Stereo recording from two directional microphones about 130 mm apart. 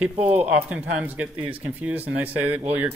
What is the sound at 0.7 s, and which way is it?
Speech, 10° right (ahead or behind).